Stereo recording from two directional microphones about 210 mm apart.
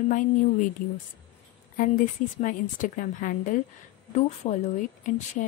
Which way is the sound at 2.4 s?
40° left (ahead or behind).